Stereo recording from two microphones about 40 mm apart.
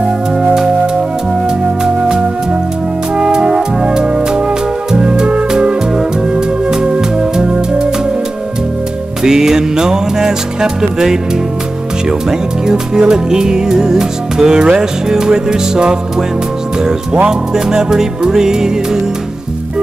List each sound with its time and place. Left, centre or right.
0.0 s music: right
3.2 s music: centre
9.2 s music: centre
12.3 s music: centre